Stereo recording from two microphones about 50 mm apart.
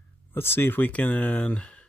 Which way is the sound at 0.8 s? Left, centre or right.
Left.